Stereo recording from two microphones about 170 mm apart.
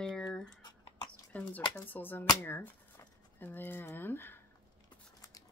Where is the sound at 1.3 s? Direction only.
10° left (ahead or behind).